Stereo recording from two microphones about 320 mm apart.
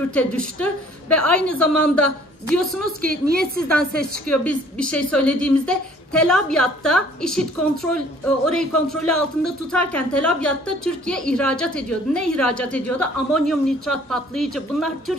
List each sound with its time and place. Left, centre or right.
0.1 s speech: centre
3.0 s a woman's voice: right
4.0 s speech: centre